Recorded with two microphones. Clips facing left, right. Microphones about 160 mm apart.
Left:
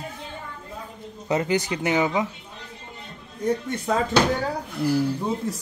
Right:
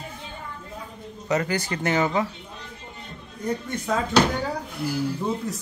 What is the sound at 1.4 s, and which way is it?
Speech, 15° left (ahead or behind).